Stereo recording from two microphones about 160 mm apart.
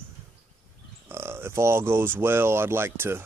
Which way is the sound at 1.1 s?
15° right (ahead or behind).